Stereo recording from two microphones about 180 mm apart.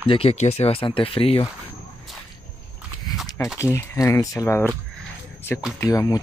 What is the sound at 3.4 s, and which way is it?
Speech, 15° left (ahead or behind).